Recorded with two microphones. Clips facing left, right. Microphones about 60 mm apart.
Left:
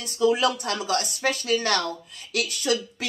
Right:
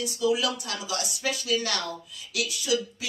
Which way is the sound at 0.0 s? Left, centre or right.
Left.